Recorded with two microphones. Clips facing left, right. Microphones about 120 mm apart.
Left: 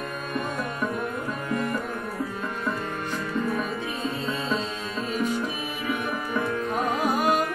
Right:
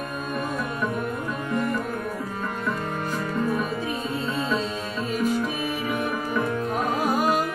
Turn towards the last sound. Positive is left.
turn(degrees=0)  # may be behind; listen again after turning